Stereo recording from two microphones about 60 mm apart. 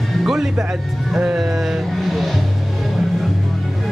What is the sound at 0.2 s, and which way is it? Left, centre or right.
Speech, centre.